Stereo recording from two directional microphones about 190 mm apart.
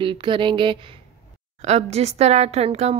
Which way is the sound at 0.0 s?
25° right (ahead or behind).